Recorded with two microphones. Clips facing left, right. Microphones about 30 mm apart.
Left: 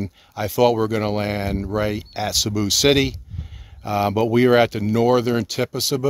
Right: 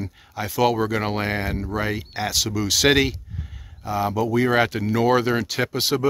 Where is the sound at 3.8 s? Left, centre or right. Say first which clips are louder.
Left 3 dB; left.